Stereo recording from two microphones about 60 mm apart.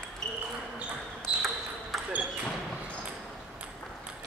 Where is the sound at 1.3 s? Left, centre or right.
Centre.